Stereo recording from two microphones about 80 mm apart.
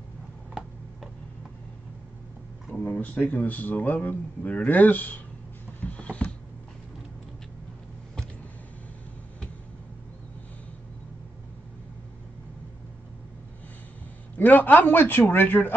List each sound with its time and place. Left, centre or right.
0.6 s tick-tock: centre
2.7 s speech: centre
5.8 s a sound: centre
14.3 s speech: left